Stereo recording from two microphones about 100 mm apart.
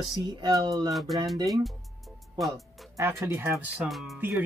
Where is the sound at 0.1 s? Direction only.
50° right (ahead or behind).